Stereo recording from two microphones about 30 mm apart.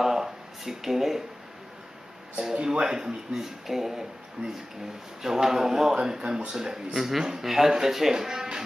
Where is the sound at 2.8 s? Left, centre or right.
Right.